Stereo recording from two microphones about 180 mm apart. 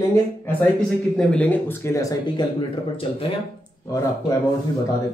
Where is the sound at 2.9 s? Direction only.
30° left (ahead or behind).